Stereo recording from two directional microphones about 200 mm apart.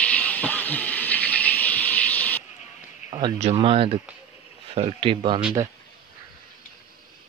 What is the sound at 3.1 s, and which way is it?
Speech, 25° right (ahead or behind).